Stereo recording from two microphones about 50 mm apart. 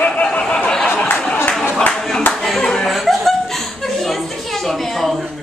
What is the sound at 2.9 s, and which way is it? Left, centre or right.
Chuckle, centre.